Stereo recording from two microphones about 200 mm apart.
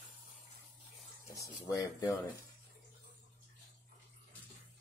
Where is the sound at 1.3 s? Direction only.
15° left (ahead or behind).